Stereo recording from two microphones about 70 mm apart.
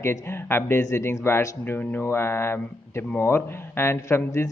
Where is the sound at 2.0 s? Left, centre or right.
Left.